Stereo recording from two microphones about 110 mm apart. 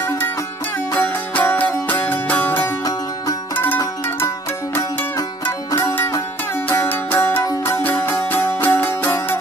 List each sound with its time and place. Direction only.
0.9 s music: 15° left (ahead or behind)
5.8 s music: 25° left (ahead or behind)